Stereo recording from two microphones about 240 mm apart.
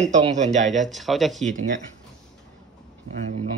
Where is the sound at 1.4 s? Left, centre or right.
Right.